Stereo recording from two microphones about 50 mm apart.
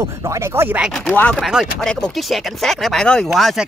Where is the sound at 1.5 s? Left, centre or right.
Centre.